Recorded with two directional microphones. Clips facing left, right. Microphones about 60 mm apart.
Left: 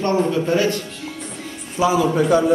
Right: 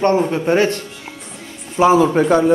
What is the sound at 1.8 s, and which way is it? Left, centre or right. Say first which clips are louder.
Speech: right 5 dB; right.